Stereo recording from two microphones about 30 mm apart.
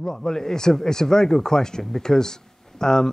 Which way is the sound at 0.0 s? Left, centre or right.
Centre.